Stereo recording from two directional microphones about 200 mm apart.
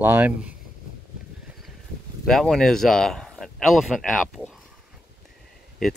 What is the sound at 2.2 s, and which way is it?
Speech, centre (ahead or behind).